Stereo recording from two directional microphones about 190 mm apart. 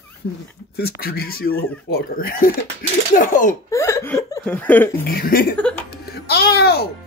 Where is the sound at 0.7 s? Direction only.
55° left (ahead or behind).